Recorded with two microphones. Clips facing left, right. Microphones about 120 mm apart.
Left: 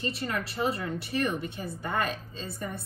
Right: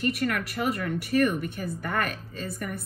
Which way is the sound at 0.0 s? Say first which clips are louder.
Right 5 dB; 25° left (ahead or behind).